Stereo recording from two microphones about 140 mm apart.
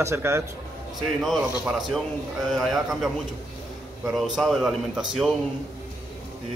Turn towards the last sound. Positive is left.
turn(degrees=-5)  # may be behind; listen again after turning